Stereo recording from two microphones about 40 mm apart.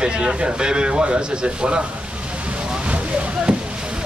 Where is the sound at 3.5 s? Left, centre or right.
Right.